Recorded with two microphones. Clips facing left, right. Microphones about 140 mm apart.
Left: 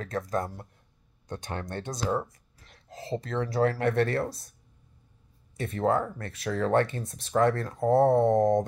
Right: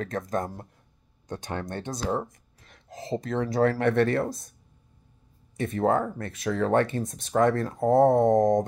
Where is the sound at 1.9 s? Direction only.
40° right (ahead or behind).